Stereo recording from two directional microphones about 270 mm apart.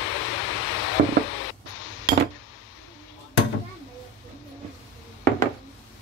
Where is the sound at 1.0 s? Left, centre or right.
Right.